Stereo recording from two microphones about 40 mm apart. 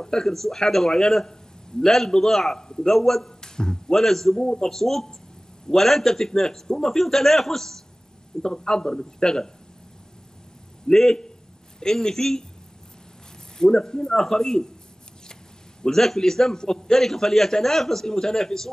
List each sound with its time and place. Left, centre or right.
0.0 s a man's voice: centre
10.9 s a man's voice: centre
13.6 s a man's voice: centre
15.8 s a man's voice: centre